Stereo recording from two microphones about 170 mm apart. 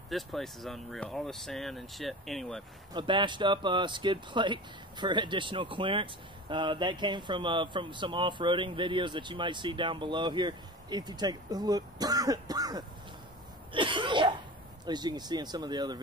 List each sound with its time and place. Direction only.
0.1 s speech: centre (ahead or behind)
2.9 s speech: 25° right (ahead or behind)
13.7 s cough: 30° right (ahead or behind)
14.9 s speech: 25° right (ahead or behind)